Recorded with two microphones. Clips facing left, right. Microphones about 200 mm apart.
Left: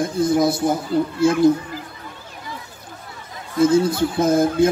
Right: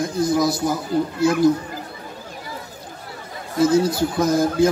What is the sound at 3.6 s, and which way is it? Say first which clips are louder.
A man's voice: left 1 dB; 25° left (ahead or behind).